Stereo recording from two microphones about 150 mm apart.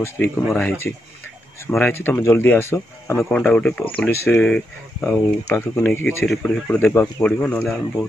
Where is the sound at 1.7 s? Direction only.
15° left (ahead or behind).